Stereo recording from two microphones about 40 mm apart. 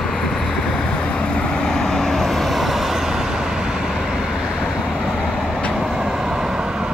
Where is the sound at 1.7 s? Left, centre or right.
Centre.